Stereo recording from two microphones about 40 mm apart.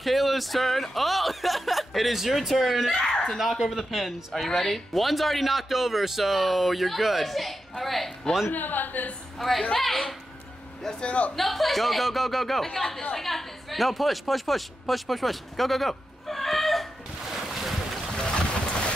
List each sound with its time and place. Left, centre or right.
0.0 s speech: centre
8.5 s a man's voice: left
9.8 s speech: centre
11.0 s a man's voice: left
11.3 s a woman's voice: centre
17.5 s boat: centre
18.1 s boat: left